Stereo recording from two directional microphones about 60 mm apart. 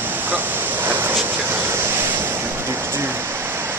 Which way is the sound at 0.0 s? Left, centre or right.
Right.